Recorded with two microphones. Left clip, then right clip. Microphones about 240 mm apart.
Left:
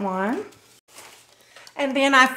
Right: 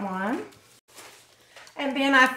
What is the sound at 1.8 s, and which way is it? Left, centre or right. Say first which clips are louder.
Speech: left 3 dB; left.